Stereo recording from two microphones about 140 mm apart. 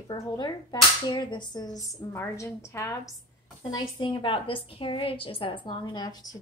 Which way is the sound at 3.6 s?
35° left (ahead or behind).